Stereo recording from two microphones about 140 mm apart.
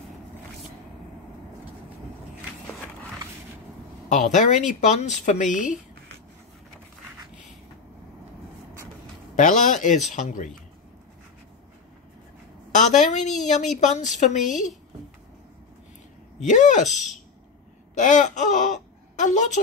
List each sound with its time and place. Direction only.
4.1 s speech: 60° left (ahead or behind)
9.4 s speech: 65° left (ahead or behind)
12.7 s a woman's voice: 60° left (ahead or behind)
16.3 s speech: 60° left (ahead or behind)
17.9 s speech: 60° left (ahead or behind)